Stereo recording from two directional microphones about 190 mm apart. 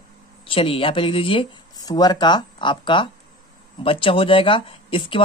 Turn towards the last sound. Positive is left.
turn(degrees=25)  # may be behind; listen again after turning